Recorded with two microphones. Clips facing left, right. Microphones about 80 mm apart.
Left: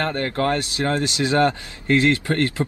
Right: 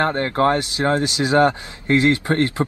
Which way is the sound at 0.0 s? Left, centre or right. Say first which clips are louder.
Right 4 dB; right.